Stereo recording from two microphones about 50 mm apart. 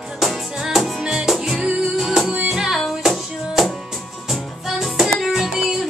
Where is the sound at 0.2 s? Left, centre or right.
Centre.